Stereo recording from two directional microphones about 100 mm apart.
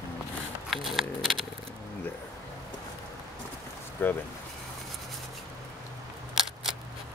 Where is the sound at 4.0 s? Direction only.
20° left (ahead or behind).